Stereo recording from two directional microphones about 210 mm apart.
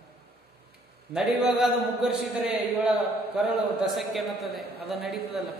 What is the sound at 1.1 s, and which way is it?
Speech, 5° right (ahead or behind).